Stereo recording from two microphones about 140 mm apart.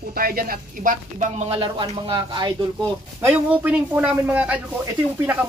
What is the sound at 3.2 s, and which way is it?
Speech, 15° right (ahead or behind).